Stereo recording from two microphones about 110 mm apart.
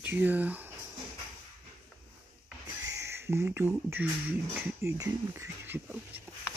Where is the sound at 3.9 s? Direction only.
15° right (ahead or behind).